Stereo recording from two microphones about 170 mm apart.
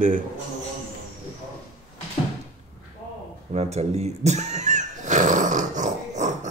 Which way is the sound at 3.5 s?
40° right (ahead or behind).